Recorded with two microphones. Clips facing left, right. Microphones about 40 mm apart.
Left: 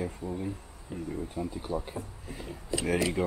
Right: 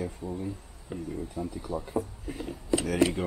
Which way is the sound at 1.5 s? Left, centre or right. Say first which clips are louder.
Left 1 dB; left.